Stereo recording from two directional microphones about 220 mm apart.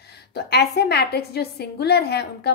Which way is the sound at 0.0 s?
50° left (ahead or behind).